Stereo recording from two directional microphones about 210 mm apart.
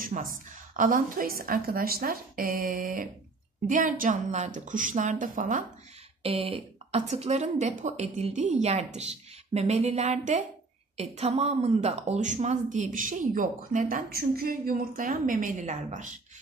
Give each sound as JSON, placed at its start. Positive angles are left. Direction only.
{"t": 0.0, "sound": "a woman's voice", "side_deg": -40}
{"t": 6.2, "sound": "a woman's voice", "side_deg": -25}